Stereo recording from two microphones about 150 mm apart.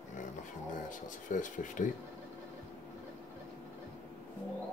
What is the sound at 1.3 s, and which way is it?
Speech, 60° left (ahead or behind).